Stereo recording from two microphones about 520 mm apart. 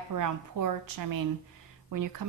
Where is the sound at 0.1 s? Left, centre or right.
Right.